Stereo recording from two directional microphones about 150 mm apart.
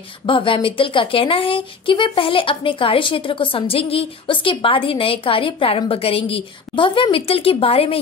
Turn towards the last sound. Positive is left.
turn(degrees=40)  # may be behind; listen again after turning